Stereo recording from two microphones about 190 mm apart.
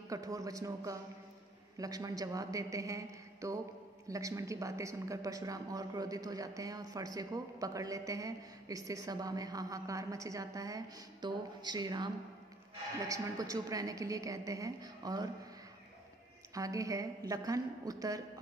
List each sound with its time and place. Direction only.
0.1 s speech: 20° right (ahead or behind)
13.1 s speech: 20° right (ahead or behind)
16.5 s a woman's voice: 15° right (ahead or behind)